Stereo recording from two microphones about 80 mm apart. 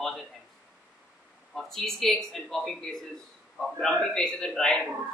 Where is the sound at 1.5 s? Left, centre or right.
Centre.